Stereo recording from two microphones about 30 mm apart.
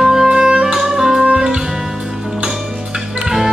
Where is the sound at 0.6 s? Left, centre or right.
Centre.